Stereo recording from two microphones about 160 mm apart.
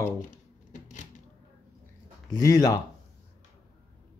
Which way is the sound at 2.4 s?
20° left (ahead or behind).